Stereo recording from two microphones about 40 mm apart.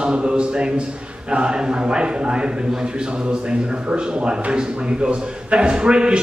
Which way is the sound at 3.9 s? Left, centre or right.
Right.